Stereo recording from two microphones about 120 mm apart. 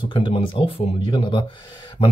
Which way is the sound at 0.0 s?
45° left (ahead or behind).